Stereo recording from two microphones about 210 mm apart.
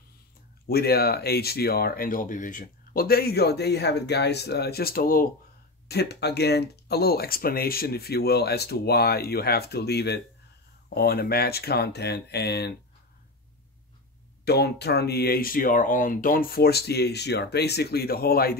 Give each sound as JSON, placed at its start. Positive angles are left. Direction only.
{"t": 0.7, "sound": "speech", "side_deg": 45}
{"t": 14.4, "sound": "speech", "side_deg": 50}